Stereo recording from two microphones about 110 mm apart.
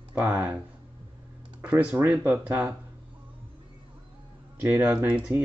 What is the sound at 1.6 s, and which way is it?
Speech, 15° right (ahead or behind).